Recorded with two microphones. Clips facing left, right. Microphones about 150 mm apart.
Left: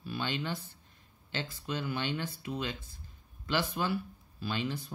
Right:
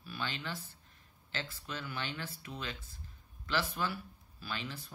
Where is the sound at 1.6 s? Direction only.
20° left (ahead or behind).